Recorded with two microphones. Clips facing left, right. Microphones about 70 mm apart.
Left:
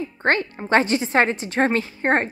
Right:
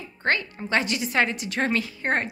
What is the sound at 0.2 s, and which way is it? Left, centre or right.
A woman's voice, left.